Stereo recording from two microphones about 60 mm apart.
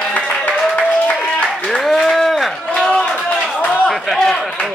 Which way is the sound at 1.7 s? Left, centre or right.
Centre.